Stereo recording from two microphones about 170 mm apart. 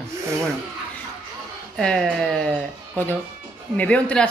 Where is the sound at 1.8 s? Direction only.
5° left (ahead or behind).